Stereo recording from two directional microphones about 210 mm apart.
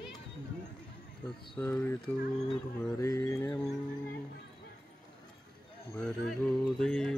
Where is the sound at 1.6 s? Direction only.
10° left (ahead or behind).